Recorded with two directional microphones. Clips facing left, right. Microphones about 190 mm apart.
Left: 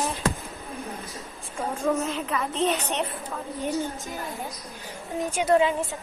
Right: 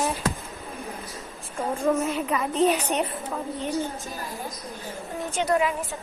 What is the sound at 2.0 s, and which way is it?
A woman's voice, 10° right (ahead or behind).